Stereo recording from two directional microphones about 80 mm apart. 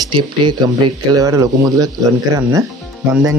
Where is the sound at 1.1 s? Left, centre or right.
Right.